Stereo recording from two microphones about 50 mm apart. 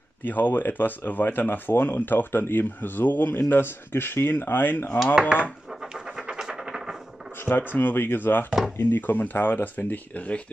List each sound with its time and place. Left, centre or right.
0.2 s speech: left
5.7 s a sound: centre
7.3 s speech: left